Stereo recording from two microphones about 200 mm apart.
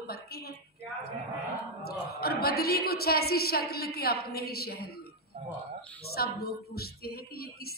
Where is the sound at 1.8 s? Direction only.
50° left (ahead or behind).